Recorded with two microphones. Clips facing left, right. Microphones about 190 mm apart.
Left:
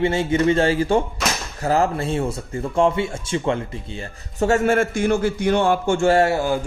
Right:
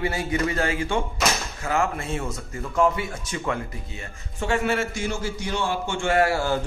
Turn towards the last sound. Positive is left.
turn(degrees=20)  # may be behind; listen again after turning